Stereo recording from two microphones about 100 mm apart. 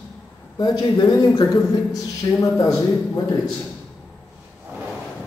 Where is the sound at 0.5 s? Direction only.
40° left (ahead or behind).